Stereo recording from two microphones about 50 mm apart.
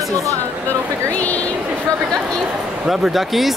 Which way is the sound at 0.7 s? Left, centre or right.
Left.